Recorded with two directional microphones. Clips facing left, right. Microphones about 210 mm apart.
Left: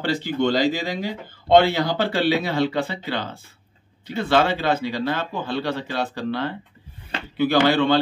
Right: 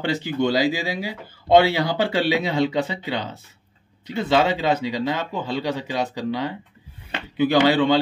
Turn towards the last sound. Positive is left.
turn(degrees=-15)  # may be behind; listen again after turning